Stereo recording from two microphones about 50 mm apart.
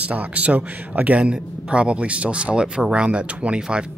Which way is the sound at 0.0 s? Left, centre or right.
Right.